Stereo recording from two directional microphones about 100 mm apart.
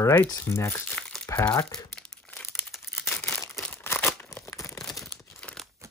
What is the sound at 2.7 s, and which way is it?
Crumpling, 5° right (ahead or behind).